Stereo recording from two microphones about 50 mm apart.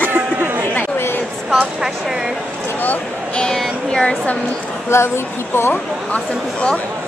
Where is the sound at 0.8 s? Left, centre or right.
Left.